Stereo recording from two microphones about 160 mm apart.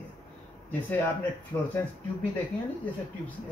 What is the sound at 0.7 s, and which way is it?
A man's voice, 10° left (ahead or behind).